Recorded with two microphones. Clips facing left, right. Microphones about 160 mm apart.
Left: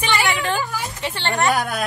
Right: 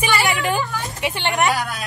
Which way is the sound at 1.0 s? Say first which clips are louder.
Right 2 dB; 15° right (ahead or behind).